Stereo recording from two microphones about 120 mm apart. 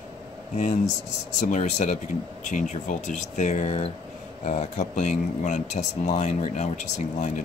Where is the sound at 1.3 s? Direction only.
90° left; by 3.9 s 65° left (ahead or behind).